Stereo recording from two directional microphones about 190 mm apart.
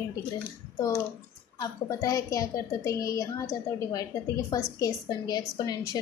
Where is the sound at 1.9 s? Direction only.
20° left (ahead or behind).